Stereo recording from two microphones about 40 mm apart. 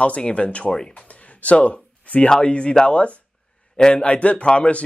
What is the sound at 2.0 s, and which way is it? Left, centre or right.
A man's voice, left.